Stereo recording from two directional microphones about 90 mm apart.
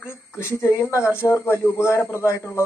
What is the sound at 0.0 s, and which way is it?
Speech, 30° left (ahead or behind).